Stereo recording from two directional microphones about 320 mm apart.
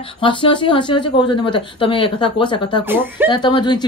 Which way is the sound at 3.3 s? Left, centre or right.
Centre.